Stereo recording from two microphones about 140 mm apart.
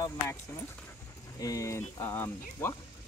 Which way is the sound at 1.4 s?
25° left (ahead or behind).